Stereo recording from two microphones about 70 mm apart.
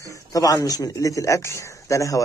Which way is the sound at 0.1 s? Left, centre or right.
Left.